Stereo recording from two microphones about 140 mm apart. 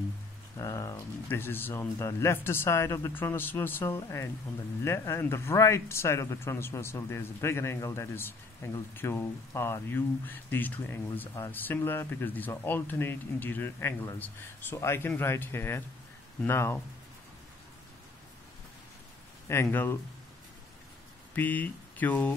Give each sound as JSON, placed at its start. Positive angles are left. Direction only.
{"t": 0.6, "sound": "speech", "side_deg": 25}
{"t": 19.5, "sound": "speech", "side_deg": 15}
{"t": 21.4, "sound": "speech", "side_deg": 10}